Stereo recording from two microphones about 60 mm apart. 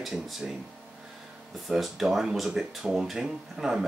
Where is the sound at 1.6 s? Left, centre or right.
Centre.